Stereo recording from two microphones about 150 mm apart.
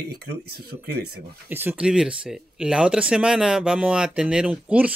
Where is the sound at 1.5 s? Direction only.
15° right (ahead or behind).